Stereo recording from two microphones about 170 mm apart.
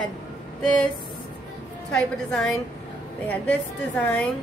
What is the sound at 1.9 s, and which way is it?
Speech, 5° left (ahead or behind).